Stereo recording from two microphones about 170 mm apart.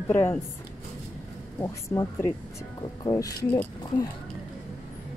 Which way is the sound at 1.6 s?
15° left (ahead or behind).